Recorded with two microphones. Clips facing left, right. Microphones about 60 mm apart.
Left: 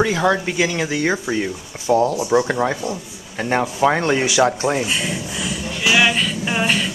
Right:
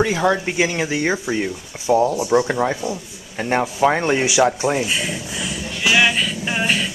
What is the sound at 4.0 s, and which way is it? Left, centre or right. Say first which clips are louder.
Speech: even; centre.